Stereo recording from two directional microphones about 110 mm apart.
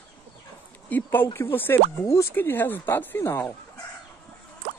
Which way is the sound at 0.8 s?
15° left (ahead or behind).